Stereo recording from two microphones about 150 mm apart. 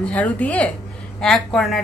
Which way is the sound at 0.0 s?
10° left (ahead or behind).